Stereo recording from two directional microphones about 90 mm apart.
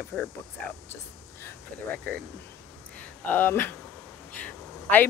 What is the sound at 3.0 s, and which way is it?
Speech, 20° left (ahead or behind).